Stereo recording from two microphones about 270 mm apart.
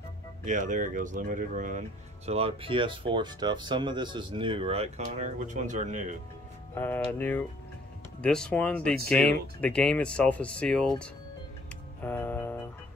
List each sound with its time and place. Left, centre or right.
0.5 s speech: right
6.7 s speech: centre
12.0 s music: centre